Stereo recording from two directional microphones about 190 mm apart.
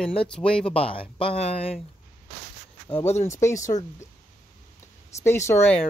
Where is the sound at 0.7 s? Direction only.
30° left (ahead or behind).